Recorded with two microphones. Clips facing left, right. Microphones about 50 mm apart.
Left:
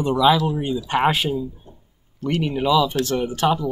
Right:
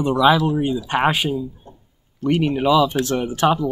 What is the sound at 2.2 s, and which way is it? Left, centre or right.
Speech, centre.